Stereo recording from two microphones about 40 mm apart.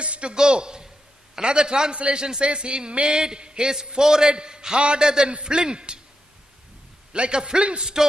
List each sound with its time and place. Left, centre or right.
0.0 s a man's voice: right
7.1 s a man's voice: right